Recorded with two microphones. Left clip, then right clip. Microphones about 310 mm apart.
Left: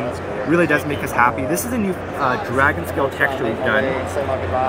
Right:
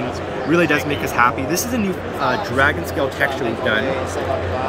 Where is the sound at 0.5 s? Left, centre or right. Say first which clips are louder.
Even; centre.